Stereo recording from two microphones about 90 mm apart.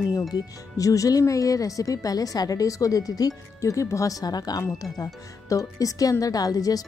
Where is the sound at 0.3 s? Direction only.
40° left (ahead or behind).